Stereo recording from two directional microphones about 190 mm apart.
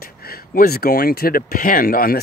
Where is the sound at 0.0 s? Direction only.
55° left (ahead or behind).